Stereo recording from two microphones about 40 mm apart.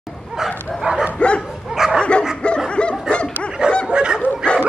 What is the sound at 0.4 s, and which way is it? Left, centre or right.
Bow-wow, centre.